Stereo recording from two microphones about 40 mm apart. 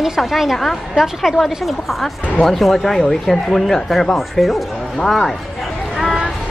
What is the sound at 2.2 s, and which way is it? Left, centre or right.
Speech, left.